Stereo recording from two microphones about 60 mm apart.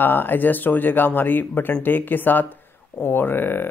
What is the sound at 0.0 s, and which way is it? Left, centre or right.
Speech, left.